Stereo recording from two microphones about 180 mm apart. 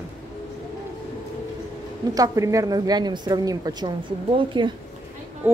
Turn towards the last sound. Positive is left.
turn(degrees=-10)  # may be behind; listen again after turning